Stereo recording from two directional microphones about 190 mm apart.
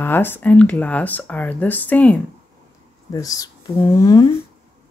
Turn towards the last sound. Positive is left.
turn(degrees=15)  # may be behind; listen again after turning